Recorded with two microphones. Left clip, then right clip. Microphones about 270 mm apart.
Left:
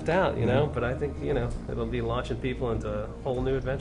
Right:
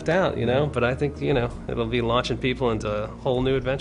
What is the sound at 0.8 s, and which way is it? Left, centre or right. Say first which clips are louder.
Speech: right 6 dB; right.